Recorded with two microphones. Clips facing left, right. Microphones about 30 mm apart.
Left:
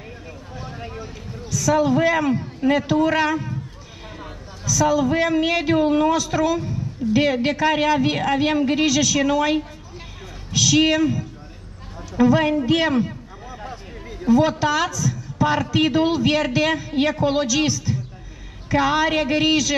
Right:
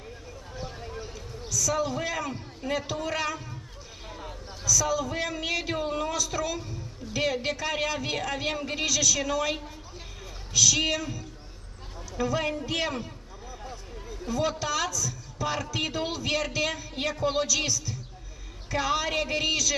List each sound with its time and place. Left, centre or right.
1.5 s a man's voice: left
14.2 s speech: left